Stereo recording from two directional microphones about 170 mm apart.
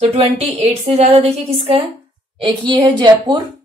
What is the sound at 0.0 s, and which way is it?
A woman's voice, 40° right (ahead or behind).